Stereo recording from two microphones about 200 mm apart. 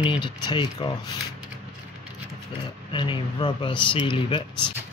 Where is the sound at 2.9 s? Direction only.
25° left (ahead or behind).